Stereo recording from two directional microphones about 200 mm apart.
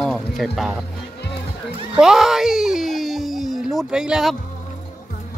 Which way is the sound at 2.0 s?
Centre (ahead or behind).